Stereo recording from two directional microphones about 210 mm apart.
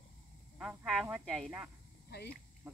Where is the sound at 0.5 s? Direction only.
5° right (ahead or behind).